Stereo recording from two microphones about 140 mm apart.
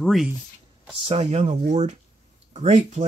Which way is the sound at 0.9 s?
40° right (ahead or behind).